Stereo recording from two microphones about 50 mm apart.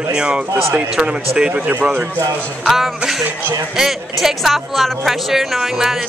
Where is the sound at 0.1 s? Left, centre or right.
Centre.